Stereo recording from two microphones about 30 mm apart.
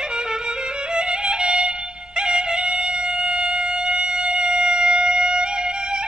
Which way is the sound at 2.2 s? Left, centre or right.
Centre.